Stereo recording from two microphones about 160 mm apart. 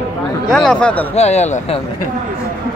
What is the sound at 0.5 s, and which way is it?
Speech, 5° left (ahead or behind).